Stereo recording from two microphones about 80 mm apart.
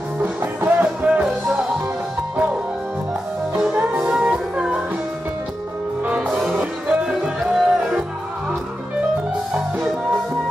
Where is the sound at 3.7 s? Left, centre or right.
Centre.